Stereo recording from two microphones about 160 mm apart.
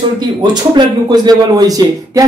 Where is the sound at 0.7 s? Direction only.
25° right (ahead or behind).